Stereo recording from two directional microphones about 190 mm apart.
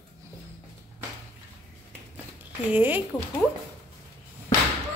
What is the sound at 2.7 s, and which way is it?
Speech, 10° right (ahead or behind).